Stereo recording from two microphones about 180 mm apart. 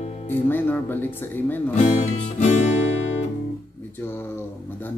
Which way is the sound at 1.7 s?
40° left (ahead or behind).